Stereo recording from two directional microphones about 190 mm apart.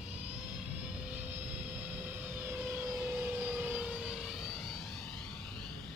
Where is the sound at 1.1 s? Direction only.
10° right (ahead or behind).